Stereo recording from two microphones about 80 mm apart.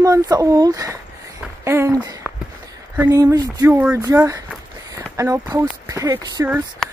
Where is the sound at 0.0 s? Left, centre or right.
Right.